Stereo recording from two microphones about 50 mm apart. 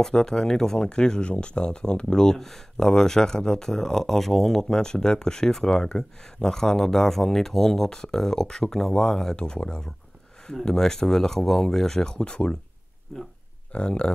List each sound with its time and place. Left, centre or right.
0.0 s speech: centre
13.1 s speech: centre
13.7 s speech: left